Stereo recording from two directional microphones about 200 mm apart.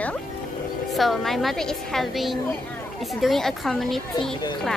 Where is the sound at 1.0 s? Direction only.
Centre (ahead or behind).